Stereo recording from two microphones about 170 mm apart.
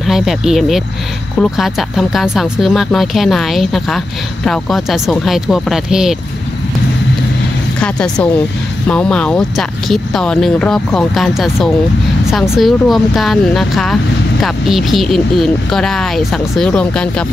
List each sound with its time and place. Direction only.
0.0 s speech: centre (ahead or behind)
7.8 s speech: 5° left (ahead or behind)